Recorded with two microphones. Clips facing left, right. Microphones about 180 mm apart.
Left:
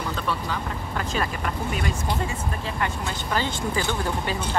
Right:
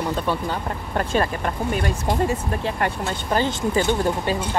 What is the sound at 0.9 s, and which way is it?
Speech, 50° right (ahead or behind).